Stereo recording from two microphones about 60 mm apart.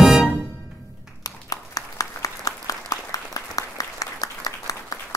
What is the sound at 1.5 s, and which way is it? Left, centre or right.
Applause, left.